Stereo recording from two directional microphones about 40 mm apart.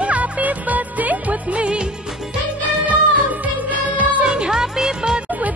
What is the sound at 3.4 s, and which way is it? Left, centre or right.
Music, right.